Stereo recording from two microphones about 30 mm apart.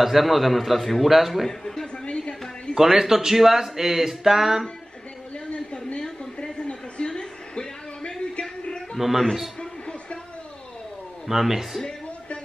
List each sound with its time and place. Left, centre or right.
0.0 s a man's voice: centre
1.5 s speech: centre
2.8 s speech: centre
5.5 s a sound: left
8.4 s music: left
8.9 s a man's voice: centre
9.6 s a sound: left
11.2 s speech: centre